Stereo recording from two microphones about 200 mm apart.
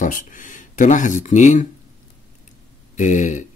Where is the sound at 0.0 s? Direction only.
40° left (ahead or behind).